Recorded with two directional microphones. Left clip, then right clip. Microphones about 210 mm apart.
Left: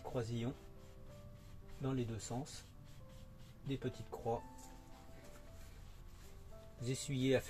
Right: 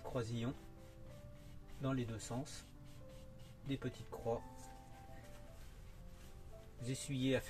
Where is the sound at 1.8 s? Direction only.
15° left (ahead or behind).